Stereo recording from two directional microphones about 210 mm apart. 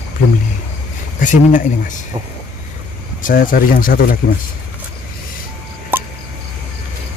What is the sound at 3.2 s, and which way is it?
Speech, 40° left (ahead or behind).